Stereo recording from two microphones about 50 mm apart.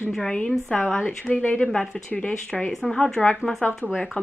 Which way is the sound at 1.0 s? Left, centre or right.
Left.